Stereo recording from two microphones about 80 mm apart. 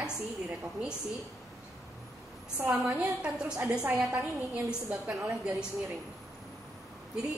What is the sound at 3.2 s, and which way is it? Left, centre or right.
A woman's voice, centre.